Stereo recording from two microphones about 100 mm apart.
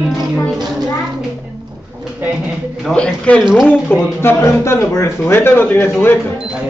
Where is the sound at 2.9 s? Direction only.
10° left (ahead or behind).